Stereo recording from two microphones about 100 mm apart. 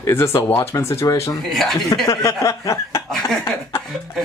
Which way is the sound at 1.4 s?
Centre (ahead or behind).